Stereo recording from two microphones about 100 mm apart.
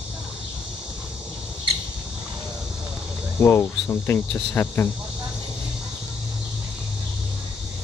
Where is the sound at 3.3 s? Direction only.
25° left (ahead or behind).